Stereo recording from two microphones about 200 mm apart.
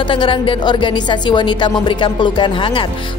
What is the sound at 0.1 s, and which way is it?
A woman's voice, 25° left (ahead or behind).